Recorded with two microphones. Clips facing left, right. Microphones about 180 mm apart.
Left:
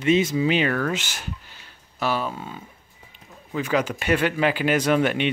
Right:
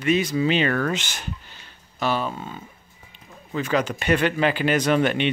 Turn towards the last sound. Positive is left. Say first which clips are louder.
# even
turn(degrees=5)  # may be behind; listen again after turning